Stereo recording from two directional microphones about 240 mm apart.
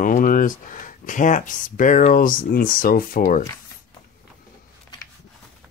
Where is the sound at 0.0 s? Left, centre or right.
Left.